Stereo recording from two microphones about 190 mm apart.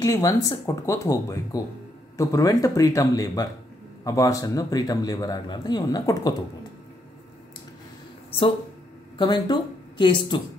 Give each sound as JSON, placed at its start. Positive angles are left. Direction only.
{"t": 0.0, "sound": "a man's voice", "side_deg": 20}
{"t": 9.2, "sound": "a woman's voice", "side_deg": 25}